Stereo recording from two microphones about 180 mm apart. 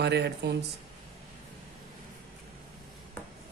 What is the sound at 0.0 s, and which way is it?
Speech, 65° right (ahead or behind).